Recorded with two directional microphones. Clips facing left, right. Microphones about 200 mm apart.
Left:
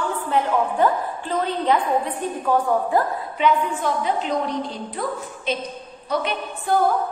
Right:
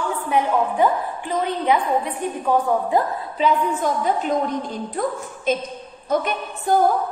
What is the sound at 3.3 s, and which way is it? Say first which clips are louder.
A woman's voice: right 1 dB; 40° right (ahead or behind).